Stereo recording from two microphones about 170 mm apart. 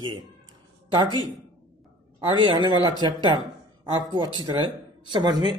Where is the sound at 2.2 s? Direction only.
25° right (ahead or behind).